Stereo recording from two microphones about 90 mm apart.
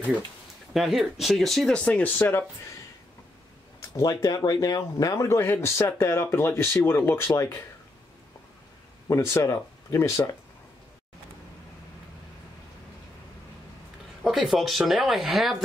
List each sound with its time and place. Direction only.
0.7 s speech: centre (ahead or behind)
2.1 s speech: 25° left (ahead or behind)
3.9 s speech: 40° left (ahead or behind)
5.4 s speech: 30° left (ahead or behind)
9.0 s speech: 35° left (ahead or behind)
14.2 s speech: centre (ahead or behind)